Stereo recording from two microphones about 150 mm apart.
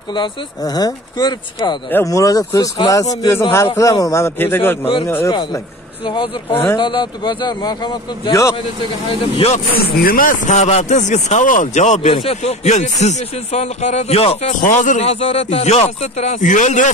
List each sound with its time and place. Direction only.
0.1 s a man's voice: 30° left (ahead or behind)
1.9 s a man's voice: 15° left (ahead or behind)
5.3 s a man's voice: 30° left (ahead or behind)
9.8 s a man's voice: 75° left (ahead or behind); by 14.5 s 40° left (ahead or behind)
14.6 s a man's voice: 55° left (ahead or behind)